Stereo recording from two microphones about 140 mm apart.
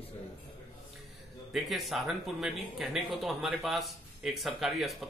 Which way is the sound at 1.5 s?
Centre (ahead or behind).